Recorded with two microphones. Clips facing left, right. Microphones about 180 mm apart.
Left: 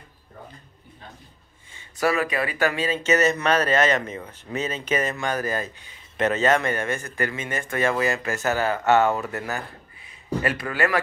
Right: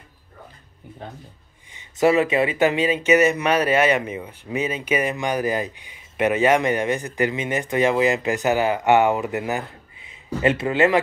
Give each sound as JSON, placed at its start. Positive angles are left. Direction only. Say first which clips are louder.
{"t": 1.7, "sound": "speech", "louder": "right 6 dB", "side_deg": -20}